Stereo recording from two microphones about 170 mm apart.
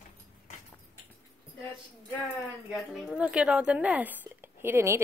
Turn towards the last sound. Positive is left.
turn(degrees=-15)  # may be behind; listen again after turning